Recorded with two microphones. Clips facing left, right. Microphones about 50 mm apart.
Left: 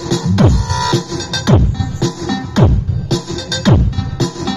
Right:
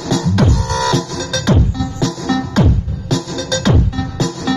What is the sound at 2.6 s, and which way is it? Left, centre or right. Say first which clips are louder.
Music: left 2 dB; centre.